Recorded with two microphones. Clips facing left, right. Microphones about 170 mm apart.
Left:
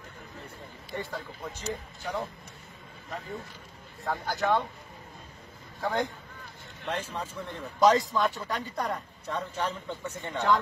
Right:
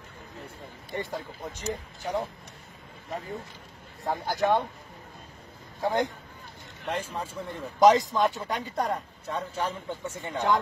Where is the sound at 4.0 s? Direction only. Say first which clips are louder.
Right 3 dB; 15° right (ahead or behind).